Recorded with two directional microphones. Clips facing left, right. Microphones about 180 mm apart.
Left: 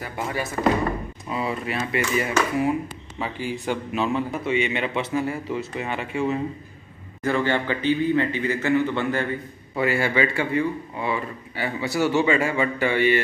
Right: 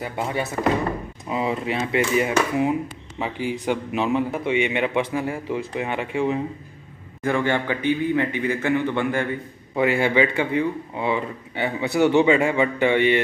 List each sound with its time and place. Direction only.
0.0 s speech: 20° right (ahead or behind)